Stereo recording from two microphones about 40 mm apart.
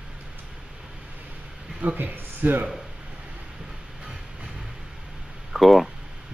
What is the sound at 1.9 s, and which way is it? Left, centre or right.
Speech, right.